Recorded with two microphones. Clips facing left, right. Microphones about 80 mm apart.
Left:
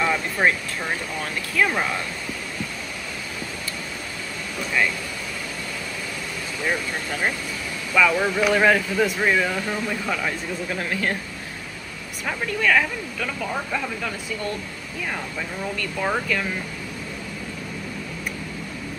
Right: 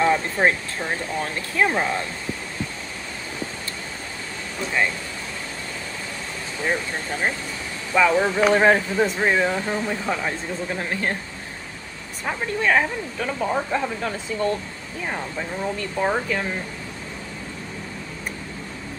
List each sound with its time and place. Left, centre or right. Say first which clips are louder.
0.0 s speech: right 2 dB; right
4.6 s speech: even; right
6.6 s speech: right 1 dB; right
12.4 s speech: even; right
13.7 s speech: right 3 dB; right
15.0 s speech: right 1 dB; right